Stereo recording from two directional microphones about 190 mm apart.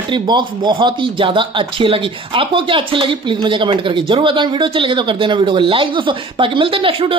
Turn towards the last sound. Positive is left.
turn(degrees=-30)  # may be behind; listen again after turning